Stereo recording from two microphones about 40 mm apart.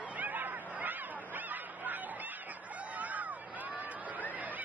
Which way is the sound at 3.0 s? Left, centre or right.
Right.